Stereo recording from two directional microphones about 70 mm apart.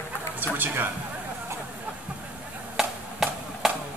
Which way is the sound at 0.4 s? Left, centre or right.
Right.